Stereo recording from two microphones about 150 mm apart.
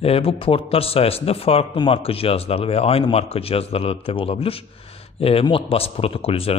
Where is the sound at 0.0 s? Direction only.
40° left (ahead or behind).